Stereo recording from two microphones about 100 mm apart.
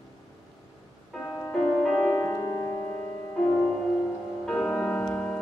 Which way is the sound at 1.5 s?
5° left (ahead or behind).